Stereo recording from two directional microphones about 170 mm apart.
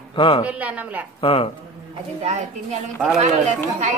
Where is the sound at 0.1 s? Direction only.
30° left (ahead or behind).